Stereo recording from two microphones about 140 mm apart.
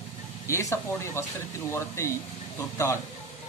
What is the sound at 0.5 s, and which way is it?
Speech, 20° left (ahead or behind).